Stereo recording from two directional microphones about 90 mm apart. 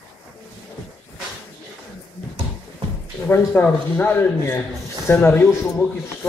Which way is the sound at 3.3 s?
20° left (ahead or behind).